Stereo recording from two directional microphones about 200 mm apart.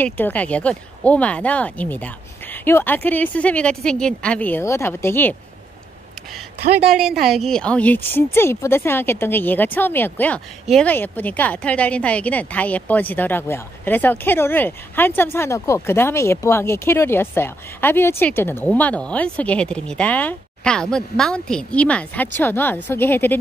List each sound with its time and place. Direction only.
0.0 s a woman's voice: 10° left (ahead or behind)
6.9 s a woman's voice: centre (ahead or behind)